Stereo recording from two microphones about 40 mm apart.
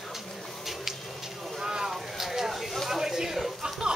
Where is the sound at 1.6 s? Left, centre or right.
Centre.